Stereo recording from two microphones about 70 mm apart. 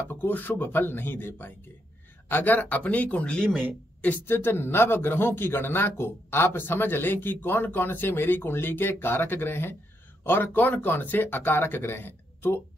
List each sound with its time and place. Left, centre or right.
0.1 s speech: left
4.0 s speech: left